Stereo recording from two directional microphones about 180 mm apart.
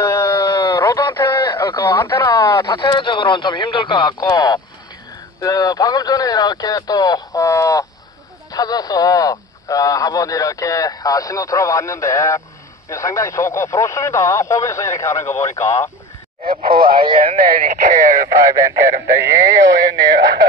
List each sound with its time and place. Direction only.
0.0 s a sound: 15° left (ahead or behind)
1.2 s radio: 25° left (ahead or behind)
2.3 s speech: 25° left (ahead or behind)
16.4 s speech: 55° right (ahead or behind)
18.5 s speech: 20° right (ahead or behind)